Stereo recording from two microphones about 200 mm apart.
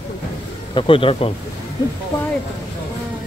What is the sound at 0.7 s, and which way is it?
Speech, 25° left (ahead or behind).